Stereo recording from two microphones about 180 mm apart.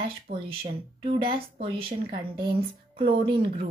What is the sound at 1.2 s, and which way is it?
Speech, 30° right (ahead or behind).